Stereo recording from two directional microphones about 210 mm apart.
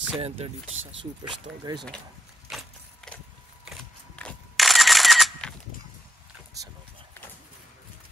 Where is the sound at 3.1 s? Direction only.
5° left (ahead or behind).